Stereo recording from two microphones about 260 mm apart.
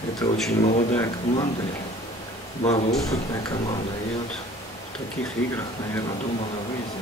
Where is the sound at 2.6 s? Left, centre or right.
Left.